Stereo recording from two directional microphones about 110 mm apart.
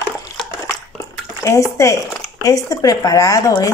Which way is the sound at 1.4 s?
30° left (ahead or behind).